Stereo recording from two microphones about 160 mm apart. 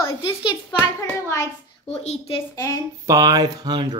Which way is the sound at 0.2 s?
30° left (ahead or behind).